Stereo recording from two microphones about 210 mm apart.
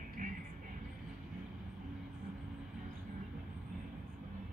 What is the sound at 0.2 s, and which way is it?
Music, 35° right (ahead or behind).